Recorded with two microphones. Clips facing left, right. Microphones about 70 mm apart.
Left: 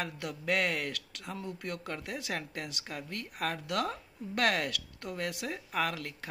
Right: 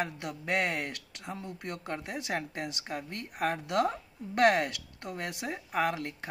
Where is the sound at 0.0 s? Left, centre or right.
Right.